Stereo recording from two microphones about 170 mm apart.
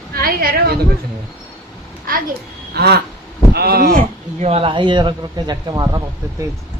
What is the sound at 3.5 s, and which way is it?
Speech, 65° right (ahead or behind).